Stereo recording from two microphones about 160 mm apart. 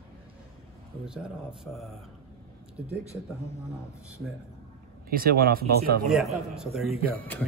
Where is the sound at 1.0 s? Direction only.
5° right (ahead or behind).